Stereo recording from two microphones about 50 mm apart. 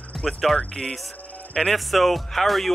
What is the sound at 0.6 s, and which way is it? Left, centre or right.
Speech, centre.